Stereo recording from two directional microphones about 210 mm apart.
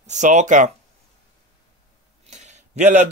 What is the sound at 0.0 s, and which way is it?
Speech, 35° right (ahead or behind).